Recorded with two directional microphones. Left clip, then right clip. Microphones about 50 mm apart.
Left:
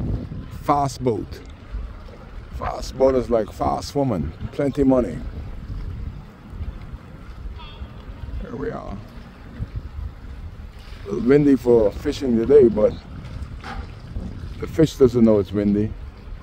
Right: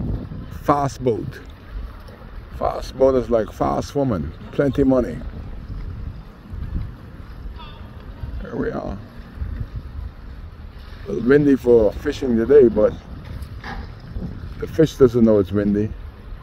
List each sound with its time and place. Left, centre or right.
0.7 s speech: left
2.6 s speech: left
8.5 s speech: left
11.1 s speech: left
14.6 s speech: left